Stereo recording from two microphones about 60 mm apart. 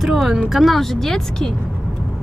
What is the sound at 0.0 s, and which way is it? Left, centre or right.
Speech, centre.